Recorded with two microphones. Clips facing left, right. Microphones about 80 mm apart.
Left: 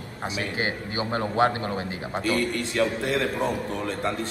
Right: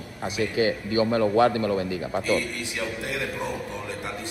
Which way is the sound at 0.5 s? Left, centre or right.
Left.